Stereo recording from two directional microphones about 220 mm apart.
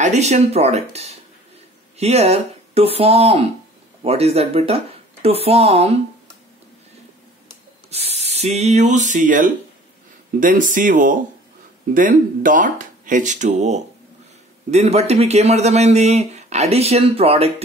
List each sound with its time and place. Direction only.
0.0 s speech: 30° right (ahead or behind)
7.9 s speech: 30° right (ahead or behind)